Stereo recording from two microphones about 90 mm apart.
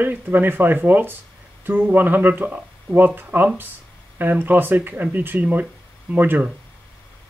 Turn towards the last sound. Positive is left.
turn(degrees=-20)  # may be behind; listen again after turning